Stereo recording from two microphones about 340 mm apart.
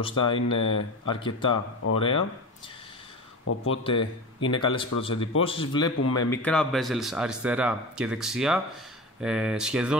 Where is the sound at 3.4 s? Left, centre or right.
Left.